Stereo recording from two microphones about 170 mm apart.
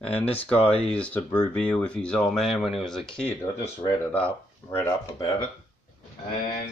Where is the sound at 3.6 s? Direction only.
15° left (ahead or behind).